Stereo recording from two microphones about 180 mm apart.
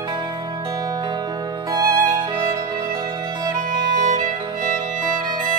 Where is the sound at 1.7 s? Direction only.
20° right (ahead or behind).